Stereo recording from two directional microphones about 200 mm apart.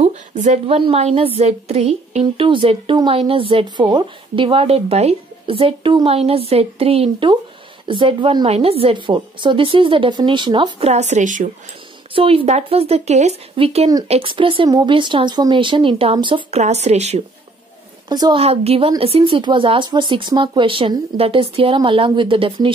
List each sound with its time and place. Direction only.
0.0 s a woman's voice: 35° right (ahead or behind)
12.1 s a woman's voice: 25° right (ahead or behind)
18.0 s a woman's voice: 20° right (ahead or behind)